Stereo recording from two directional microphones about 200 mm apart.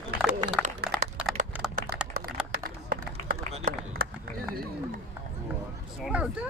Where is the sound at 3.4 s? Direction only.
45° right (ahead or behind).